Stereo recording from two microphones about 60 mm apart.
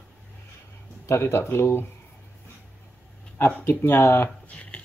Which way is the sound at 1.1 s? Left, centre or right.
Left.